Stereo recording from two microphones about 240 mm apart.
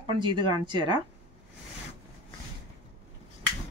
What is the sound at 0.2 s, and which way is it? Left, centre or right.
Speech, centre.